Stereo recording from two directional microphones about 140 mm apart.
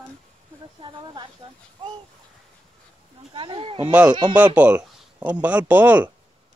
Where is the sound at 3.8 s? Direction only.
10° right (ahead or behind).